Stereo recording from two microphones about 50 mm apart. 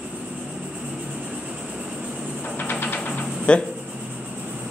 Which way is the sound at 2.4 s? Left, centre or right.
Left.